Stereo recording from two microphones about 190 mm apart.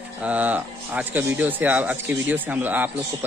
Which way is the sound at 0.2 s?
10° right (ahead or behind).